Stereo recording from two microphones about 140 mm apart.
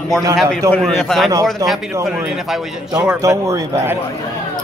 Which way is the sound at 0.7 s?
5° left (ahead or behind).